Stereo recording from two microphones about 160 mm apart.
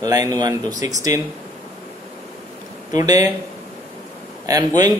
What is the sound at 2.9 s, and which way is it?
Speech, 25° right (ahead or behind).